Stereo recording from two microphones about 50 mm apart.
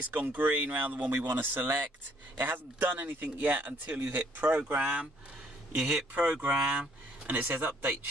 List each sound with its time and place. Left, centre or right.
0.1 s a man's voice: right
6.1 s speech: right
7.3 s a man's voice: right